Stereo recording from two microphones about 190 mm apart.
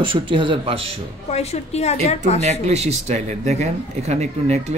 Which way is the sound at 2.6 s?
35° right (ahead or behind).